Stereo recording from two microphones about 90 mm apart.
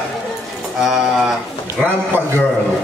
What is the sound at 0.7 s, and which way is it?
Speech, 5° right (ahead or behind).